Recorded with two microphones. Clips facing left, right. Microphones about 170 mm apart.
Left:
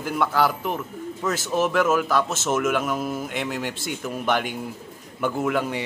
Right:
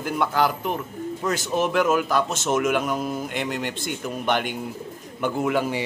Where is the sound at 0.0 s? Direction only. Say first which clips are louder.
Even; centre (ahead or behind).